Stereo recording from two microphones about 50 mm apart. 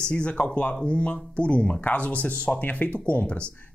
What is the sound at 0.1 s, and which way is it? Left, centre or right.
Speech, left.